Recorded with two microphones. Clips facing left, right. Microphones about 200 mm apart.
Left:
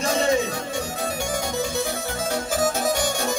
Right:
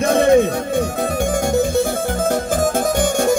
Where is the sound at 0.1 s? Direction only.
55° right (ahead or behind).